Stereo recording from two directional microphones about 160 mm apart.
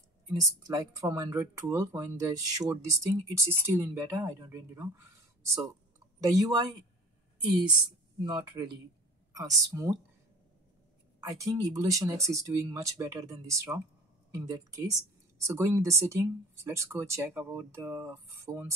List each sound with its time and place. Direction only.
0.3 s speech: 20° right (ahead or behind)
8.2 s speech: 25° right (ahead or behind)
11.1 s speech: 20° right (ahead or behind)